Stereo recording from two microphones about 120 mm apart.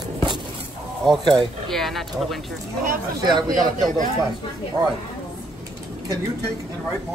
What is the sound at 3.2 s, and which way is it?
Speech, 35° right (ahead or behind).